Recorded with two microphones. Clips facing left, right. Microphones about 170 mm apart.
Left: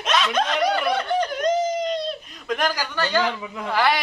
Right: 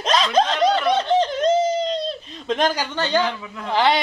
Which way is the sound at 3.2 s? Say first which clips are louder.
Even; 15° left (ahead or behind).